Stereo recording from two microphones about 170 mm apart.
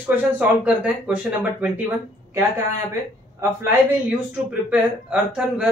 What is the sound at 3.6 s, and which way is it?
Speech, 10° right (ahead or behind).